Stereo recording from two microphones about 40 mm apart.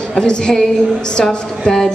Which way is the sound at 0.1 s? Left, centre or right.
Centre.